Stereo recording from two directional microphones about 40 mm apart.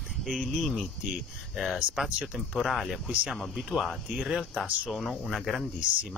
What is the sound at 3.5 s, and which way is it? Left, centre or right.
Speech, centre.